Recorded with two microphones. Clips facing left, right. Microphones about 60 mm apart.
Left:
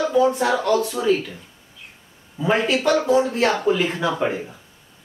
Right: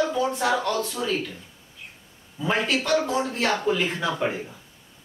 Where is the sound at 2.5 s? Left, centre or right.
Centre.